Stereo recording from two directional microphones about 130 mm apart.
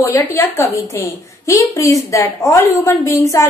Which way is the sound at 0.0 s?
20° left (ahead or behind).